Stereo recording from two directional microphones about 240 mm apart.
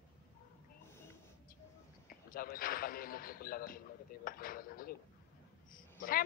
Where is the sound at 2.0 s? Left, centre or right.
Left.